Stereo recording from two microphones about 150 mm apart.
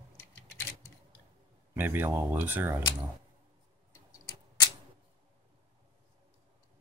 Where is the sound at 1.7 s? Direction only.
15° right (ahead or behind).